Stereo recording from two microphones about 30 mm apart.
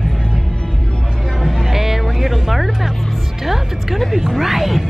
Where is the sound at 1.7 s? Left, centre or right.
Centre.